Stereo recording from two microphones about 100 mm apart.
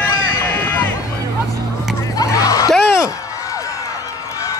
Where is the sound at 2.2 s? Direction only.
35° left (ahead or behind).